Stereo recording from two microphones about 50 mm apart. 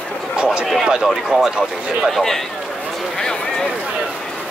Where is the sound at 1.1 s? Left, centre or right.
Centre.